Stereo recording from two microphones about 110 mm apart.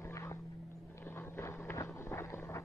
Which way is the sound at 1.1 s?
20° left (ahead or behind).